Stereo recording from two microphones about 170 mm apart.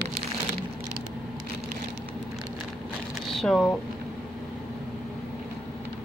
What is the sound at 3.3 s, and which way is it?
Speech, centre (ahead or behind).